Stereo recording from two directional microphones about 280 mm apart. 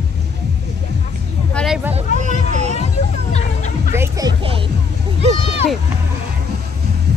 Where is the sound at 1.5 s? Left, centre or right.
Centre.